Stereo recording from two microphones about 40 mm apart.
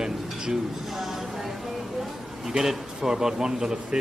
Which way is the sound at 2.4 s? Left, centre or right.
Centre.